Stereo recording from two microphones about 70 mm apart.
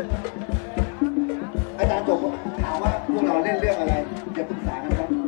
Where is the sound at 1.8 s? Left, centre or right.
Centre.